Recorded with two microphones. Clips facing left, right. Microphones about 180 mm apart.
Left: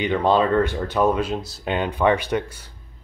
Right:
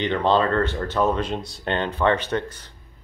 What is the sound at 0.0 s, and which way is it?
Speech, 10° left (ahead or behind).